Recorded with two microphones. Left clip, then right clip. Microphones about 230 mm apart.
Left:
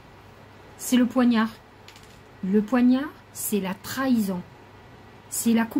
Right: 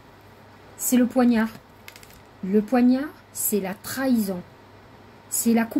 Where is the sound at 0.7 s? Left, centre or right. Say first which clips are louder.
Right 2 dB; centre.